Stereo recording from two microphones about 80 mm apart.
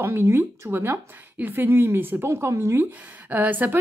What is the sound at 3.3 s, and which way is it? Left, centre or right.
Speech, right.